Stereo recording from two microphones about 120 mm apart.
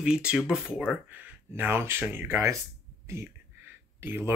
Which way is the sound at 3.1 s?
20° right (ahead or behind).